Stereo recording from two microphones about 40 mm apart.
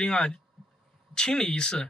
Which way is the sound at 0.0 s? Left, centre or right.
Left.